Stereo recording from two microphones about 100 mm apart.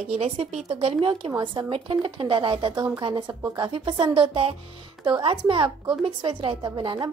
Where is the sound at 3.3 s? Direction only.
35° right (ahead or behind).